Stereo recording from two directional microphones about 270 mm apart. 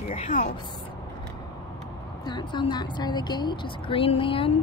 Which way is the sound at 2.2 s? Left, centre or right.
Centre.